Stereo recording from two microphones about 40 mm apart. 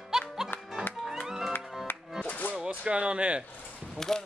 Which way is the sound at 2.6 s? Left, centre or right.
Right.